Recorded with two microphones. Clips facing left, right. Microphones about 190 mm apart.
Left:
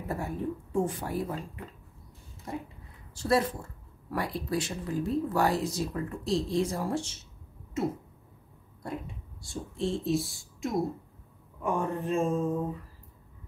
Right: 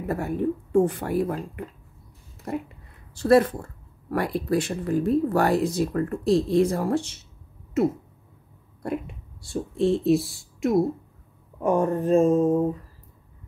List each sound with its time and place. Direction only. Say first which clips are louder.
0.1 s speech: right 7 dB; 65° right (ahead or behind)
2.5 s speech: right 7 dB; 65° right (ahead or behind)
8.8 s speech: right 8 dB; 65° right (ahead or behind)
11.6 s speech: right 8 dB; 40° right (ahead or behind)